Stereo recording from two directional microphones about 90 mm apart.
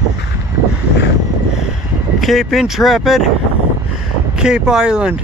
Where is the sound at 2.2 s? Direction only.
Centre (ahead or behind).